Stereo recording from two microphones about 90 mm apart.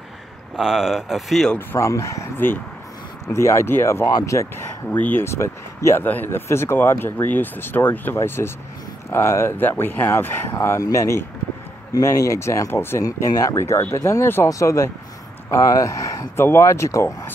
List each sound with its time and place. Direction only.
0.6 s speech: 5° right (ahead or behind)
1.8 s speech: 35° left (ahead or behind)
4.0 s speech: 40° left (ahead or behind)
4.9 s speech: 20° left (ahead or behind)
13.0 s speech: 40° left (ahead or behind)